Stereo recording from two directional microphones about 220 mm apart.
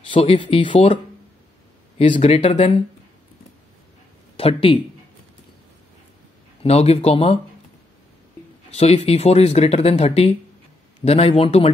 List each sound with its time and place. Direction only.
0.1 s speech: 25° left (ahead or behind)
2.0 s speech: 25° left (ahead or behind)
4.4 s speech: 25° left (ahead or behind)
6.6 s speech: 30° left (ahead or behind)
8.7 s speech: 30° left (ahead or behind)